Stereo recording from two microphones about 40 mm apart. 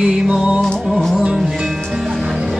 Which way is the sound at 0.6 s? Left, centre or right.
Centre.